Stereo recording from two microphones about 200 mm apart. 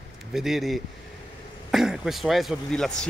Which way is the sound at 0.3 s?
Centre (ahead or behind).